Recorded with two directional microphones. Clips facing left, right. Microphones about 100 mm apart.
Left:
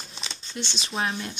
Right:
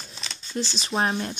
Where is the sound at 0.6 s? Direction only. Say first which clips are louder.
Right 4 dB; 35° right (ahead or behind).